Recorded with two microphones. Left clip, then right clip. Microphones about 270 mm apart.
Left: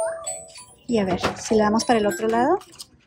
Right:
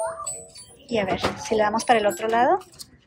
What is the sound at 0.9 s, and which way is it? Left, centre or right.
A woman's voice, centre.